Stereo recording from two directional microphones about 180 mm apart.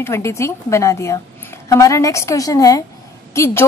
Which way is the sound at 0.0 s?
15° left (ahead or behind).